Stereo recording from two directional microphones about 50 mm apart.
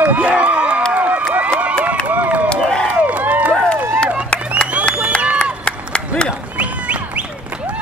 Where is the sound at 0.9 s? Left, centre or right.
Right.